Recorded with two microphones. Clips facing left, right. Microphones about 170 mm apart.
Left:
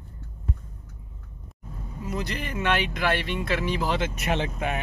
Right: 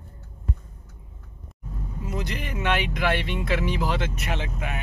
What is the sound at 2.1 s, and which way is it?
Speech, 15° right (ahead or behind).